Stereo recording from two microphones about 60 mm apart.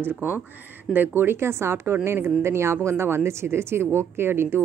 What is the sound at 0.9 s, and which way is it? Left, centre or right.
A woman's voice, right.